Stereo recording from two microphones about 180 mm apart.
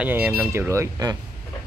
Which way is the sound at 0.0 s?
10° right (ahead or behind).